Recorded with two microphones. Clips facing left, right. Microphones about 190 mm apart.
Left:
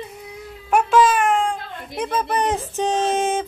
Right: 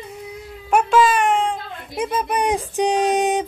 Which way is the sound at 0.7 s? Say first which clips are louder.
Even; centre (ahead or behind).